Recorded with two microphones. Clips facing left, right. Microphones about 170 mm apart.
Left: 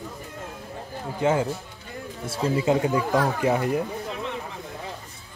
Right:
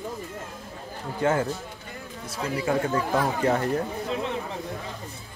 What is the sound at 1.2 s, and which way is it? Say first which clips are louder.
Speech: left 1 dB; 15° left (ahead or behind).